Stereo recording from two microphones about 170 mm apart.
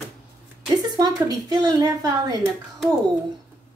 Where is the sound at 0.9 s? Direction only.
20° right (ahead or behind).